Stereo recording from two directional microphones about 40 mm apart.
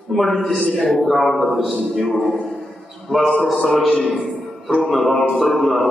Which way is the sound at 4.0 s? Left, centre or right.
Centre.